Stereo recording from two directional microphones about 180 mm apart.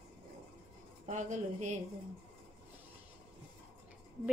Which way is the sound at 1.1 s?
40° right (ahead or behind).